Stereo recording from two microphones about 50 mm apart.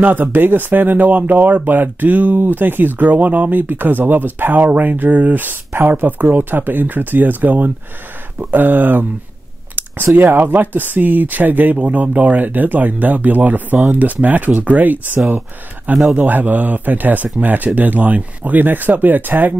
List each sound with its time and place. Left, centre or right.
0.0 s speech: right
16.2 s speech: right